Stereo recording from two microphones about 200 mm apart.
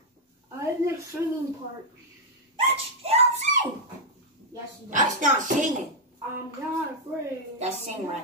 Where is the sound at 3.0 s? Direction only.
35° right (ahead or behind).